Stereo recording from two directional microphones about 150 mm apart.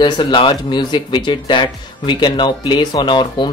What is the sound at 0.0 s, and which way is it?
Speech, 30° left (ahead or behind).